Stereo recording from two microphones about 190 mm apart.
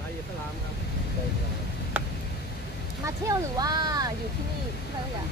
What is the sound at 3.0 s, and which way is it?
Speech, 20° right (ahead or behind).